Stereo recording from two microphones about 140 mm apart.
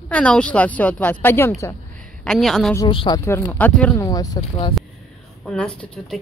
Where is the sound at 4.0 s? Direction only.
25° left (ahead or behind).